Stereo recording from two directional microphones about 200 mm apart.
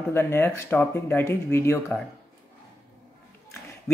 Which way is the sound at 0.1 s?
10° left (ahead or behind).